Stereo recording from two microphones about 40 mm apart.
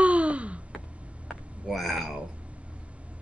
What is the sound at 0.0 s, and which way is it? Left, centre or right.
Gasp, right.